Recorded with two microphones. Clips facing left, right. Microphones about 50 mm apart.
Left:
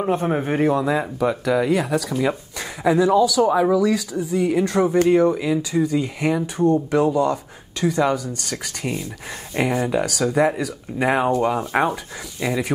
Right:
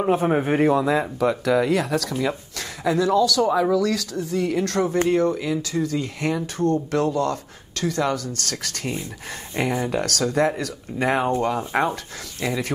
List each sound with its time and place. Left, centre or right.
0.0 s speech: centre